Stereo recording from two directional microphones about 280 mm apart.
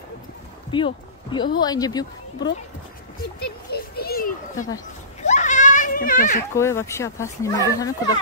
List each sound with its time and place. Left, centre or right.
0.7 s speech: centre
3.7 s children playing: left
6.5 s speech: centre